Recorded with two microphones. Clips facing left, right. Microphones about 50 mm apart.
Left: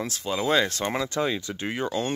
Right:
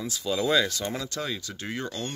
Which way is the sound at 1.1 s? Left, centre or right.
Left.